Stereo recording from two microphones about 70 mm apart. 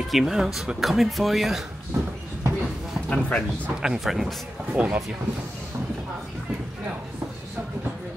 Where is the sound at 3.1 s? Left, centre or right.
Centre.